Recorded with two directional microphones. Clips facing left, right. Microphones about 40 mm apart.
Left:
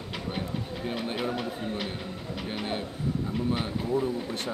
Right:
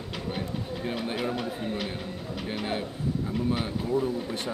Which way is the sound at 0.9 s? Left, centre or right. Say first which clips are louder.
Even; centre.